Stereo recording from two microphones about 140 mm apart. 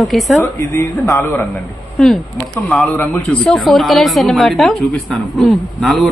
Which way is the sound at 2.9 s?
10° left (ahead or behind).